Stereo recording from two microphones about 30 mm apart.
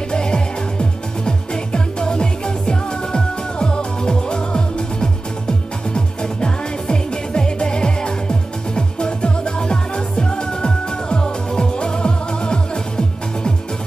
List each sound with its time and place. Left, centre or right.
0.1 s music: left